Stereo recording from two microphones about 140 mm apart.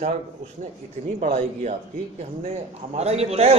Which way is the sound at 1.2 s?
55° right (ahead or behind).